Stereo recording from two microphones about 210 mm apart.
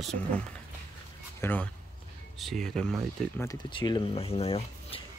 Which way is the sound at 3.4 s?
20° left (ahead or behind).